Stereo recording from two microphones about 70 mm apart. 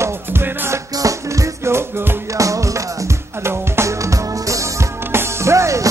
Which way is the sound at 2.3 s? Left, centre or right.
Right.